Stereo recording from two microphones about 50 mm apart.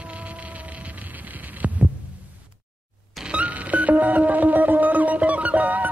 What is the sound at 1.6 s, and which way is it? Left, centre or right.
Heart sounds, right.